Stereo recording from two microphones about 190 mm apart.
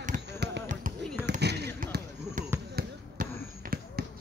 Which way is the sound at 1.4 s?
60° right (ahead or behind).